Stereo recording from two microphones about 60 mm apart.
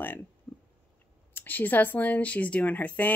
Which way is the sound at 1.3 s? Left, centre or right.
Left.